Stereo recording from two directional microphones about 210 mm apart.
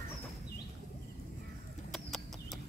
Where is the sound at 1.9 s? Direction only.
Centre (ahead or behind).